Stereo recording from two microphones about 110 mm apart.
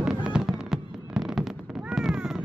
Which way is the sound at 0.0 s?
10° right (ahead or behind).